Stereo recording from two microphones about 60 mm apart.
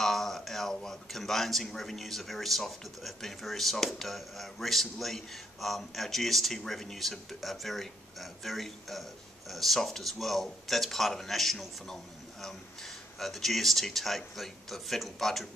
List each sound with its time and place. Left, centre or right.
0.0 s speech: centre